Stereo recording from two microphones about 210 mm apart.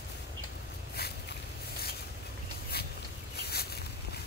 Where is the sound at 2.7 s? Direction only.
50° left (ahead or behind).